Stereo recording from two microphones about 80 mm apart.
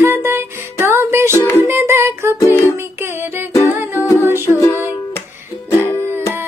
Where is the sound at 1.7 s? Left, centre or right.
Right.